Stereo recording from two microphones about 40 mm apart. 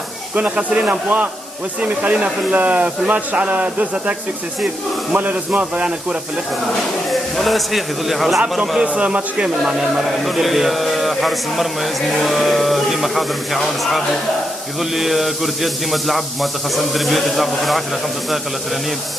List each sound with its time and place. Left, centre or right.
0.3 s a man's voice: right
1.8 s speech: right
2.5 s a man's voice: right
7.1 s mantra: centre
8.8 s a man's voice: right
9.7 s mantra: centre